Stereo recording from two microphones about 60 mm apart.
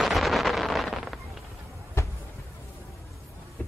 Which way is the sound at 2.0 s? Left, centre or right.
Left.